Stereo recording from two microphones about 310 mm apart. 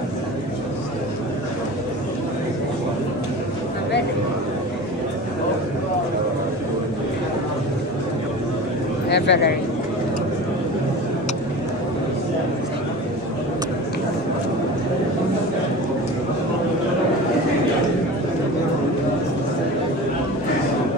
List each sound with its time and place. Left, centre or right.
9.1 s speech: left